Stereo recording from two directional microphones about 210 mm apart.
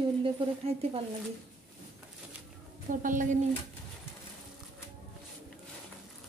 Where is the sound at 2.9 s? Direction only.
40° right (ahead or behind).